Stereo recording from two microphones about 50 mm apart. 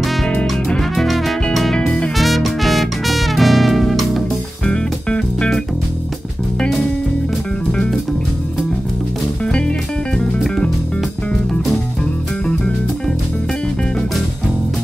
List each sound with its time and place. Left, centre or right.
0.7 s music: centre
1.8 s music: centre
2.1 s music: centre
4.6 s music: centre
7.7 s music: centre
9.4 s music: centre